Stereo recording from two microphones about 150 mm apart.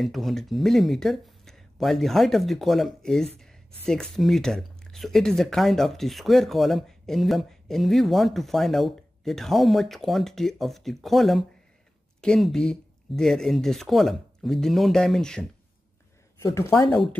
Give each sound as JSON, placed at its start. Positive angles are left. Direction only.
{"t": 0.0, "sound": "speech", "side_deg": 0}
{"t": 16.4, "sound": "speech", "side_deg": 20}
{"t": 16.9, "sound": "speech", "side_deg": 5}